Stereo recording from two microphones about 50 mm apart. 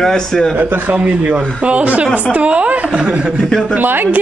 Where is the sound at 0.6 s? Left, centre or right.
Right.